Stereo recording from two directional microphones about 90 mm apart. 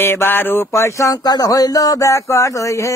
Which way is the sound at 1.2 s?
45° left (ahead or behind).